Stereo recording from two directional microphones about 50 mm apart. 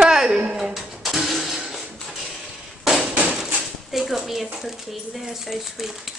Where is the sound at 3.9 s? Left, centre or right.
Centre.